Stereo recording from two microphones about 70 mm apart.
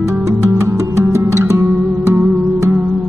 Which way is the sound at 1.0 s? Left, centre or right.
Right.